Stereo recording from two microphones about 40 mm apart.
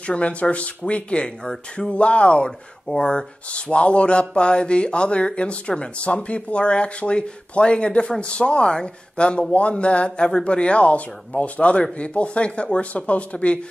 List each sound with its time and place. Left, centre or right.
0.0 s speech: left
1.4 s speech: centre
1.9 s speech: left